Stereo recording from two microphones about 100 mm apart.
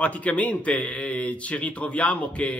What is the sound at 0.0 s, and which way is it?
Speech, 15° left (ahead or behind).